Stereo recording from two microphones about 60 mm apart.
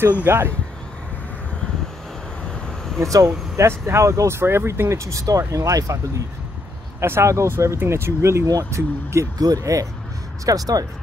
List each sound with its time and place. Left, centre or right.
0.3 s speech: right
3.0 s speech: right
3.5 s speech: right
7.0 s speech: right
10.4 s speech: right